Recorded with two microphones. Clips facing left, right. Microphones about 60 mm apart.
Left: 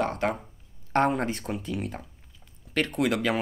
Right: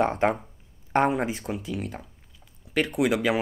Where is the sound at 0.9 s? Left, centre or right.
Centre.